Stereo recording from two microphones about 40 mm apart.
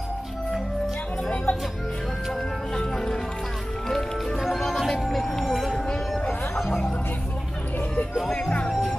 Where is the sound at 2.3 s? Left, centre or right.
Centre.